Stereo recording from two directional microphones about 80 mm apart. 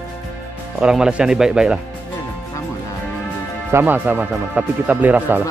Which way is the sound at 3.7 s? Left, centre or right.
Right.